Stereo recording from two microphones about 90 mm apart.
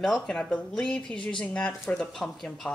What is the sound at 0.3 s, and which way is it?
A woman's voice, 10° left (ahead or behind).